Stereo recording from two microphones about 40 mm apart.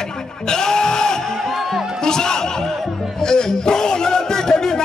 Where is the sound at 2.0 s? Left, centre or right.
Centre.